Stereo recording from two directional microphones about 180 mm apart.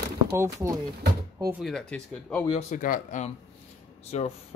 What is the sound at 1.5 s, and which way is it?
Speech, centre (ahead or behind).